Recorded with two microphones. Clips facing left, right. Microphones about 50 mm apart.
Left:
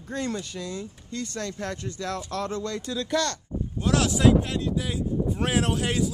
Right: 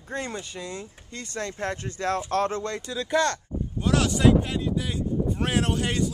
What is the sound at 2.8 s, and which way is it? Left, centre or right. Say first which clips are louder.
Speech: right 4 dB; centre.